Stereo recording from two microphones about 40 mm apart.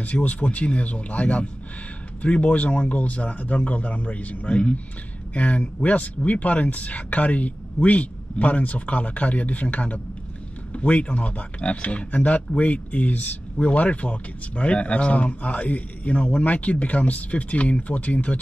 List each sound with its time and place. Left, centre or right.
0.0 s speech: left